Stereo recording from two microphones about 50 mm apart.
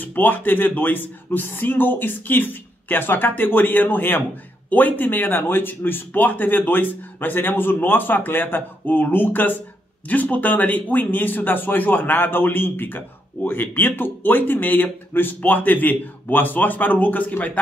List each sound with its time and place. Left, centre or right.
0.0 s a man's voice: left